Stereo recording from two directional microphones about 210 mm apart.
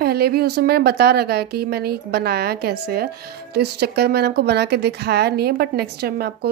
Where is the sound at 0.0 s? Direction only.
50° right (ahead or behind).